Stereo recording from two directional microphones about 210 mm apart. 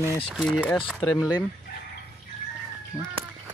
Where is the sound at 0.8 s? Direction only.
15° left (ahead or behind).